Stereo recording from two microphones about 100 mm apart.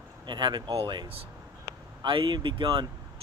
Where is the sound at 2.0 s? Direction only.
55° right (ahead or behind).